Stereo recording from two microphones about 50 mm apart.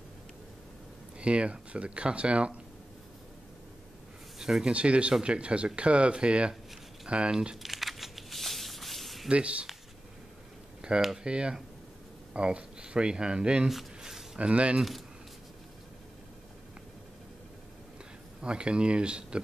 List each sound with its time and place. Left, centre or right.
1.2 s speech: right
4.4 s speech: centre
4.7 s speech: right
7.6 s a sound: centre
9.3 s speech: right
10.8 s speech: centre
13.7 s a sound: centre
14.4 s speech: right
18.4 s speech: centre